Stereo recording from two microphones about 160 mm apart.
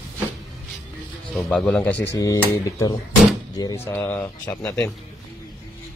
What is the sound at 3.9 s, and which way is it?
Speech, 15° left (ahead or behind).